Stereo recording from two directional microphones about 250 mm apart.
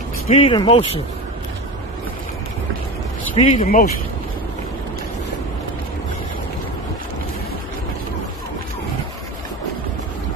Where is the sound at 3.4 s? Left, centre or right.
Left.